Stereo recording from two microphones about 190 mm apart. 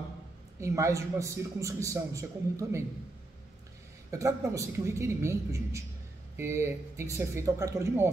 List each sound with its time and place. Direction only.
0.6 s a man's voice: 15° right (ahead or behind)
4.1 s a man's voice: 15° right (ahead or behind)